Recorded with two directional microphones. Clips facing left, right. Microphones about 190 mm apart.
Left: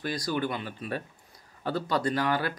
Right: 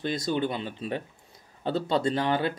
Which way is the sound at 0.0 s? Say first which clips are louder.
Right 2 dB; 25° right (ahead or behind).